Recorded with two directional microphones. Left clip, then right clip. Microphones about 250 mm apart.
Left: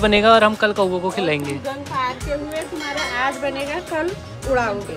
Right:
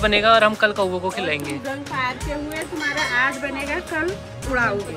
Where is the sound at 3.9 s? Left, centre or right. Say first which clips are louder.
Left 2 dB; left.